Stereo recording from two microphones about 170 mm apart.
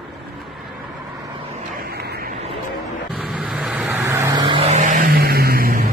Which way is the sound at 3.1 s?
Centre (ahead or behind).